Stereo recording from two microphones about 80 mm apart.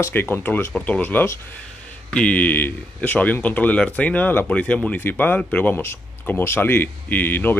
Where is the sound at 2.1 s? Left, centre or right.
Centre.